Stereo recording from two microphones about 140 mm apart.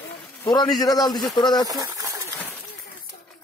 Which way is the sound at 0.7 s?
25° left (ahead or behind).